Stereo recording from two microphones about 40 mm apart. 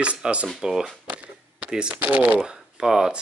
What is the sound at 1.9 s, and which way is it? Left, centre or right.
Speech, right.